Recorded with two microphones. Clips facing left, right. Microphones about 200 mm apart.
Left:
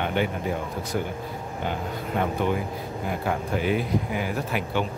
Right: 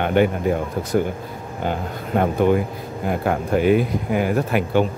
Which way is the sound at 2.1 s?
50° right (ahead or behind).